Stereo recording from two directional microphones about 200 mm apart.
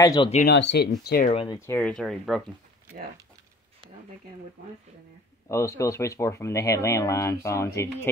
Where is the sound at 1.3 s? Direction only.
25° left (ahead or behind).